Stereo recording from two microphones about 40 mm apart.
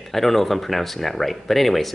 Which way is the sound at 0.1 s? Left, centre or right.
Centre.